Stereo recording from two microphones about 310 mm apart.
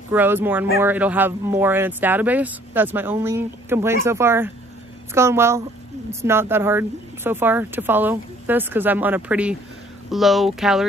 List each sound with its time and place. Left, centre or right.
0.1 s speech: centre